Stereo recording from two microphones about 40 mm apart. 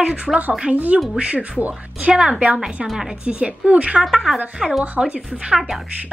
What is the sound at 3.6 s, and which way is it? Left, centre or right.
Speech, right.